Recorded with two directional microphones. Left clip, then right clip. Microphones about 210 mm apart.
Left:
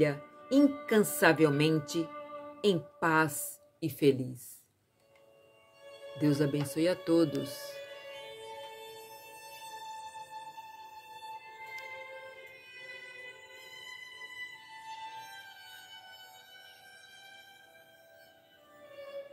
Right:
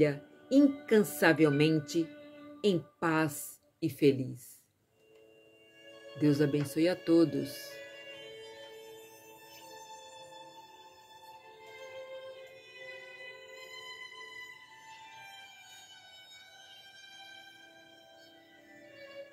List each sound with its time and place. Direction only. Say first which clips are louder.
0.0 s speech: even; 15° left (ahead or behind)
6.1 s speech: right 1 dB; 10° left (ahead or behind)